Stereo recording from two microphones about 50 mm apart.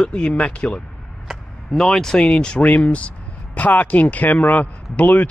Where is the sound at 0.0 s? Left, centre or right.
Centre.